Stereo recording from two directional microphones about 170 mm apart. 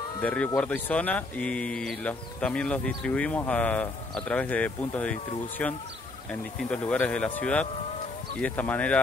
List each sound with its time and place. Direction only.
0.2 s speech: 10° left (ahead or behind)